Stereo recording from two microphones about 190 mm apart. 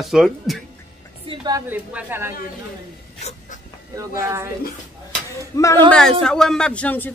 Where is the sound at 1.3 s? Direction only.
20° right (ahead or behind).